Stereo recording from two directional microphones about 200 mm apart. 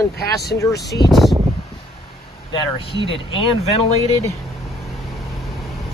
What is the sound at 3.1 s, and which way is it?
Speech, 25° left (ahead or behind).